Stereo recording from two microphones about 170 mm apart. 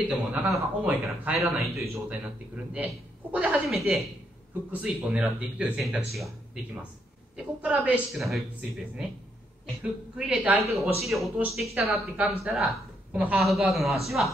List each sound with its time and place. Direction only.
0.0 s a man's voice: 10° right (ahead or behind)
10.1 s a man's voice: 5° right (ahead or behind)